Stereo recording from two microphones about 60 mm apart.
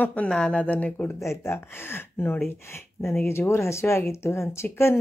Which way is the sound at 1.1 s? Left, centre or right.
Left.